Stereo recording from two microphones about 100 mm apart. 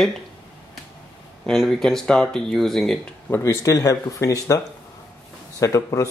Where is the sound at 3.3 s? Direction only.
25° left (ahead or behind).